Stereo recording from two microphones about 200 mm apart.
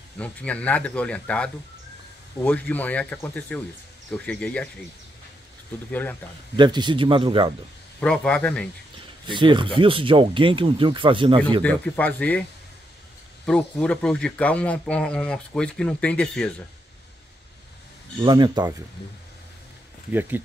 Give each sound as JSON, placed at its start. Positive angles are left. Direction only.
{"t": 0.2, "sound": "speech", "side_deg": 5}
{"t": 5.9, "sound": "speech", "side_deg": 10}
{"t": 6.5, "sound": "speech", "side_deg": -20}
{"t": 8.0, "sound": "a man's voice", "side_deg": 5}
{"t": 9.2, "sound": "speech", "side_deg": -25}
{"t": 11.6, "sound": "speech", "side_deg": 5}
{"t": 13.5, "sound": "a man's voice", "side_deg": 5}
{"t": 18.2, "sound": "speech", "side_deg": -20}
{"t": 20.1, "sound": "speech", "side_deg": -10}